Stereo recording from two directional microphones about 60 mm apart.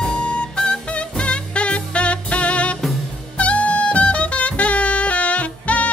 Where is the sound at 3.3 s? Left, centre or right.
Left.